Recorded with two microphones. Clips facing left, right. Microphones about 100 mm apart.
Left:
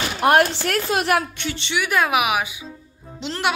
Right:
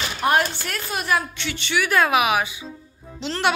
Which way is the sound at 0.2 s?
70° left (ahead or behind).